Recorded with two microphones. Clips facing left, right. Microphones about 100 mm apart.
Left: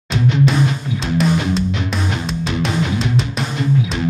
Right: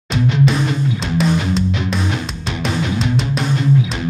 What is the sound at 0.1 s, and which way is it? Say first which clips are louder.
Music: even; centre (ahead or behind).